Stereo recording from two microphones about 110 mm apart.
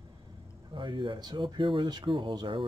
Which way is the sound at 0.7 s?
45° right (ahead or behind).